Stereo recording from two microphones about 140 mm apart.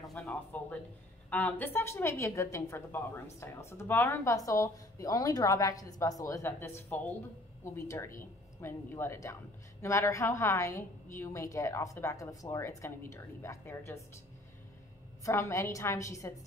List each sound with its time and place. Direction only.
0.1 s speech: 10° left (ahead or behind)
15.2 s speech: 20° left (ahead or behind)